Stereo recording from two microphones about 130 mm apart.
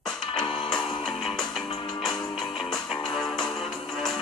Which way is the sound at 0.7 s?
35° left (ahead or behind).